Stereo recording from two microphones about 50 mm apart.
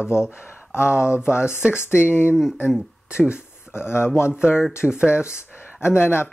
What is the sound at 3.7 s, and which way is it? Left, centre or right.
Speech, left.